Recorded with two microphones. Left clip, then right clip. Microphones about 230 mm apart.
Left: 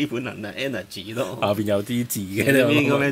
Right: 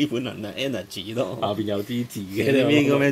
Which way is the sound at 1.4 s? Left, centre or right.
Left.